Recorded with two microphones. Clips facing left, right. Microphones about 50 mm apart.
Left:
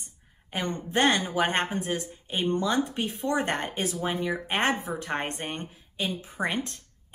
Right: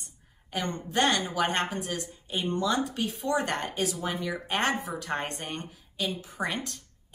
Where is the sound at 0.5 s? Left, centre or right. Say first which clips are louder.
Left 1 dB; left.